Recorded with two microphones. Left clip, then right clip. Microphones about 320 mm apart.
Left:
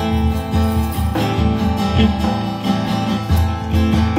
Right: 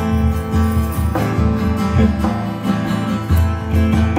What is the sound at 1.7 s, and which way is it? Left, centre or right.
Music, centre.